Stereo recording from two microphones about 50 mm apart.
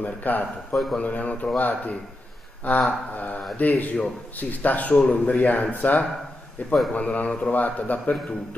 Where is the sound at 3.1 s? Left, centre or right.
Left.